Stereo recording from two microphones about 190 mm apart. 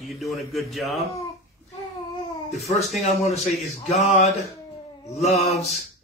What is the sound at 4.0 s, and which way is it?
Speech, 35° left (ahead or behind).